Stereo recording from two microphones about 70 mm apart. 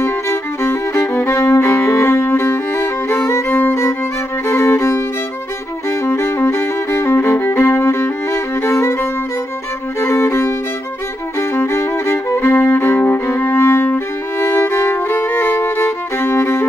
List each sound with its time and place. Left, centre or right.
0.0 s music: left
6.0 s music: left
10.0 s violin: left
11.5 s music: left